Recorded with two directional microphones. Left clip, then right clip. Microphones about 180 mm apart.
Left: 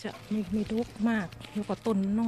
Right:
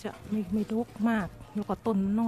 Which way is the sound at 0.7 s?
15° right (ahead or behind).